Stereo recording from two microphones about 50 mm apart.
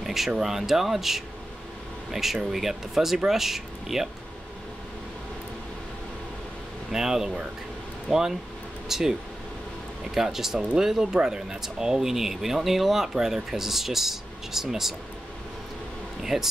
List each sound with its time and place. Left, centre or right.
0.0 s a sound: centre
0.4 s speech: centre
6.9 s speech: centre
10.1 s speech: centre
16.2 s speech: centre